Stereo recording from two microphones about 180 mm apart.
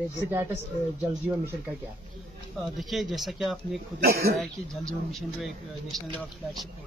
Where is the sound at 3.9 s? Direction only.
60° right (ahead or behind).